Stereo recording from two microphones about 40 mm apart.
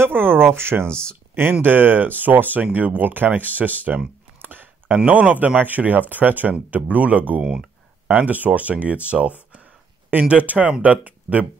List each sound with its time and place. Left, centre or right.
0.0 s speech: right
0.6 s speech: right
0.8 s speech: left
1.6 s speech: right
4.4 s a sound: right
5.3 s speech: right